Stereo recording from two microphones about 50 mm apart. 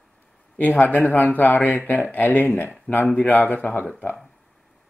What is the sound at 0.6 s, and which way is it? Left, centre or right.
Speech, left.